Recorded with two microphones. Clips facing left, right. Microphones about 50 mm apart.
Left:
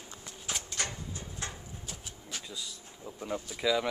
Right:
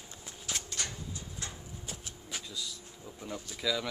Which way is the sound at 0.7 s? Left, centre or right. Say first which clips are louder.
Left 2 dB; left.